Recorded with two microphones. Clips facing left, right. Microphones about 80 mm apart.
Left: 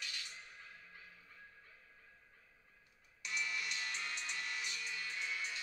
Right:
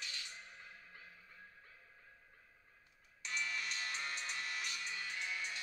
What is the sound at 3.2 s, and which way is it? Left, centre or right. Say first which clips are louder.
Music: even; right.